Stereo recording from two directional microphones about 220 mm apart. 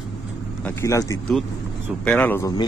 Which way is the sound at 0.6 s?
15° left (ahead or behind).